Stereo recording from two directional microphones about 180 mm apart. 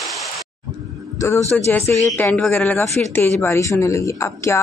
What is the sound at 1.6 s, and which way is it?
Speech, 15° left (ahead or behind).